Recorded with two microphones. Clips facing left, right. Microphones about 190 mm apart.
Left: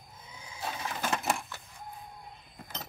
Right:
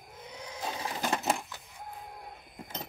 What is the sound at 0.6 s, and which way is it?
Sewing machine, 20° right (ahead or behind).